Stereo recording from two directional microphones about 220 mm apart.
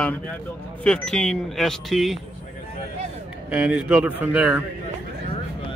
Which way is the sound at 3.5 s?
5° right (ahead or behind).